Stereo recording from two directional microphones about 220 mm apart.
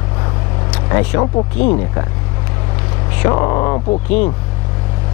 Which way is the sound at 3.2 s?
20° left (ahead or behind).